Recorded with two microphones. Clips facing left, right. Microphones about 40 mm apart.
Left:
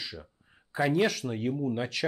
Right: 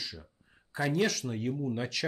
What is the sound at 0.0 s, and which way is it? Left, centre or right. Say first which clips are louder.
Speech: left 2 dB; centre.